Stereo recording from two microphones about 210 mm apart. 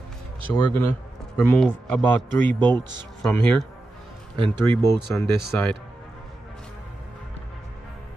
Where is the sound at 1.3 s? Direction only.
5° left (ahead or behind).